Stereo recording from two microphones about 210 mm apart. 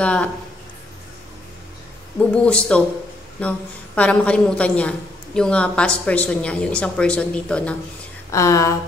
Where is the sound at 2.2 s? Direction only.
5° left (ahead or behind).